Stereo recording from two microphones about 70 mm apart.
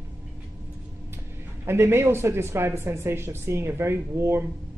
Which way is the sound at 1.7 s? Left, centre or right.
Right.